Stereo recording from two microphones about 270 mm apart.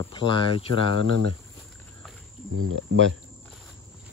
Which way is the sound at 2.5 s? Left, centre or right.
Right.